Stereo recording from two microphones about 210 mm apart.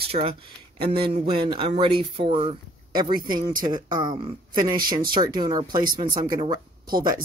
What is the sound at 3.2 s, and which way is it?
Speech, 40° right (ahead or behind).